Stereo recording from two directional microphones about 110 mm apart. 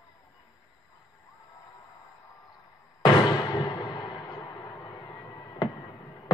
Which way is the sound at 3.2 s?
40° left (ahead or behind).